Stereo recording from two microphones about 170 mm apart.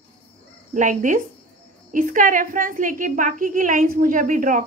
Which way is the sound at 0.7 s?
50° right (ahead or behind).